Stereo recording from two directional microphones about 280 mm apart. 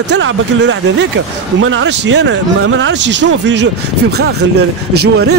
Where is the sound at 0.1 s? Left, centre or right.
Right.